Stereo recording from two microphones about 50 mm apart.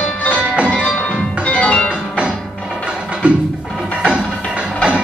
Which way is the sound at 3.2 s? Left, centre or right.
Right.